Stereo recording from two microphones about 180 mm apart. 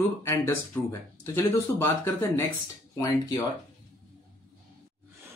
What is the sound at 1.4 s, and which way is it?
Speech, 10° left (ahead or behind).